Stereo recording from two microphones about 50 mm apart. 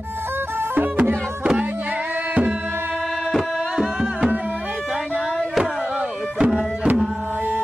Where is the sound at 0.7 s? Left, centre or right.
Right.